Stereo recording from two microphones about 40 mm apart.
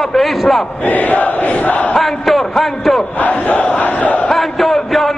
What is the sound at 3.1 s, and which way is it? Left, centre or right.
Crowd, left.